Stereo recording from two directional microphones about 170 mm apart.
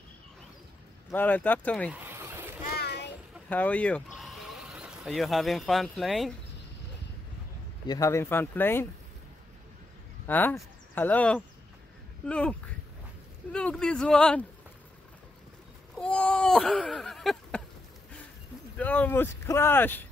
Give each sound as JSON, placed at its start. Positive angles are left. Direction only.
{"t": 1.1, "sound": "speech", "side_deg": 10}
{"t": 1.9, "sound": "vehicle", "side_deg": -10}
{"t": 2.8, "sound": "a sound", "side_deg": 75}
{"t": 3.4, "sound": "speech", "side_deg": 10}
{"t": 7.8, "sound": "speech", "side_deg": 20}
{"t": 10.2, "sound": "speech", "side_deg": 10}
{"t": 16.0, "sound": "a sound", "side_deg": 5}
{"t": 18.8, "sound": "speech", "side_deg": 10}